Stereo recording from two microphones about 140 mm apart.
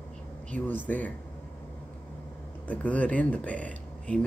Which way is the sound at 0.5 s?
10° left (ahead or behind).